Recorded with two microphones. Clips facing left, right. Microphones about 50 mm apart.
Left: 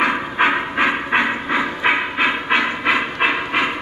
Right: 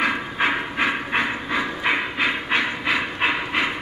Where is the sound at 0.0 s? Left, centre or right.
Left.